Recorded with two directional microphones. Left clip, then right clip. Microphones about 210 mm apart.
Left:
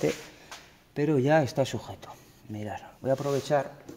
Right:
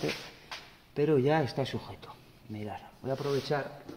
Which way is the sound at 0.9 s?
40° left (ahead or behind).